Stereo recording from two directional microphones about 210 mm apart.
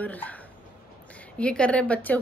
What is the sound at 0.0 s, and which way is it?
Speech, 5° left (ahead or behind).